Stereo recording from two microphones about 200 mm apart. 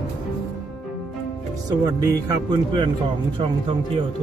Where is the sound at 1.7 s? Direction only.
20° right (ahead or behind).